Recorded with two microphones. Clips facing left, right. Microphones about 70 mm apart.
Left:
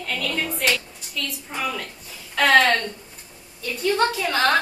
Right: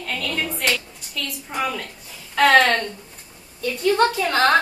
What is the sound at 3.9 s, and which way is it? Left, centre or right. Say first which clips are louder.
Speech: right 2 dB; centre.